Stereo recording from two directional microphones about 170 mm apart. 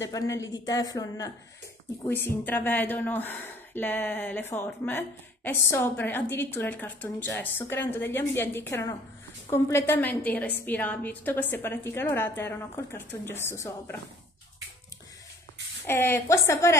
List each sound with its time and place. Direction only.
0.0 s a woman's voice: 20° left (ahead or behind)
15.8 s a woman's voice: 15° left (ahead or behind)